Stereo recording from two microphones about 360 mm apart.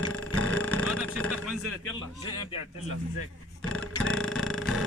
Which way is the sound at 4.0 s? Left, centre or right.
Centre.